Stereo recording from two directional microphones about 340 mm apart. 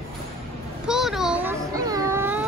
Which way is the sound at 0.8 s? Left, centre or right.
Centre.